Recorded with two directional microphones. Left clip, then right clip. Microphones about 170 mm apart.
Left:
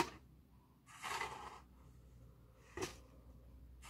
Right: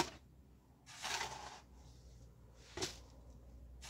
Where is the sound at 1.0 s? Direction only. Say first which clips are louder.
Right 1 dB; 10° right (ahead or behind).